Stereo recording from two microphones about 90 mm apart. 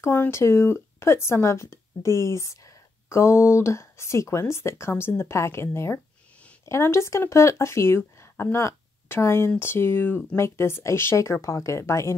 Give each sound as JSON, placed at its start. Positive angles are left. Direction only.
{"t": 0.0, "sound": "speech", "side_deg": 30}